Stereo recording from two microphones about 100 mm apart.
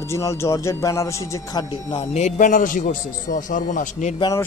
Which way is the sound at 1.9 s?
90° left.